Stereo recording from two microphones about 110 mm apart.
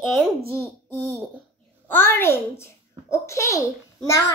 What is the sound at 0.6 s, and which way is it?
Speech, 15° right (ahead or behind).